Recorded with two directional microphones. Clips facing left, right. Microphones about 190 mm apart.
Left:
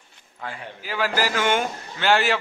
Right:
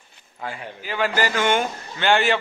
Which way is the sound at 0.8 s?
5° left (ahead or behind).